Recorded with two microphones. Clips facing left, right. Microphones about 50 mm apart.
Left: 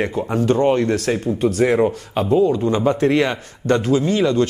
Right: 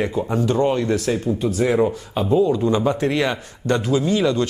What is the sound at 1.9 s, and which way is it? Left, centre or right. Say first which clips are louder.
Speech: left 2 dB; left.